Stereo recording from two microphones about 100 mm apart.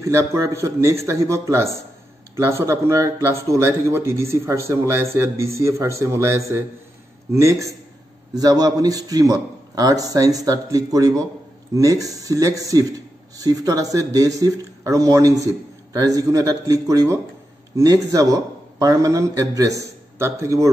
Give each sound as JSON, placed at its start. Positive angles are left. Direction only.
{"t": 0.0, "sound": "a man's voice", "side_deg": -30}